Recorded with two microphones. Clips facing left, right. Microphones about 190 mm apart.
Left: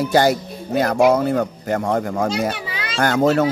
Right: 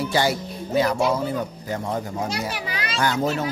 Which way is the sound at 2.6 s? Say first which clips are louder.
Even; 25° left (ahead or behind).